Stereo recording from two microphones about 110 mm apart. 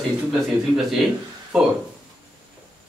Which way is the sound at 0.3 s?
5° right (ahead or behind).